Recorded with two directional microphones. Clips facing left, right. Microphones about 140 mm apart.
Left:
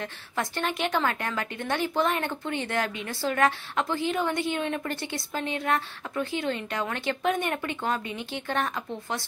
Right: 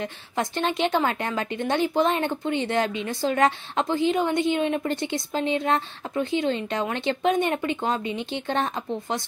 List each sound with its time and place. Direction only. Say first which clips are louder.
0.0 s a woman's voice: right 4 dB; 20° right (ahead or behind)